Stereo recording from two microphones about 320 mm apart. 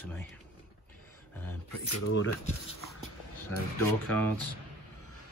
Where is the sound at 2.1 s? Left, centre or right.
Left.